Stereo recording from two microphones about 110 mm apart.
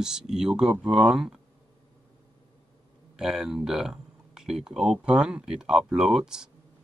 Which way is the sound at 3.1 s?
5° right (ahead or behind).